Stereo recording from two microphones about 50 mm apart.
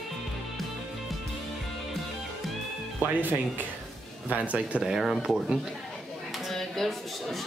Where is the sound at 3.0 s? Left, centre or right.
Right.